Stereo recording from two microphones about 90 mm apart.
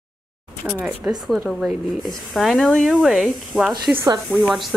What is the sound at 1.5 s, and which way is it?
Speech, centre (ahead or behind).